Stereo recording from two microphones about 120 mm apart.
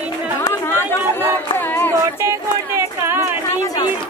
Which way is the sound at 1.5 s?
20° left (ahead or behind).